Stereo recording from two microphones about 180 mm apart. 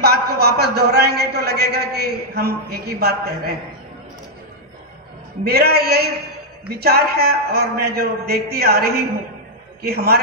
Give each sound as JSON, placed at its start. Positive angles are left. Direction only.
{"t": 0.0, "sound": "a man's voice", "side_deg": -65}
{"t": 5.4, "sound": "a man's voice", "side_deg": -60}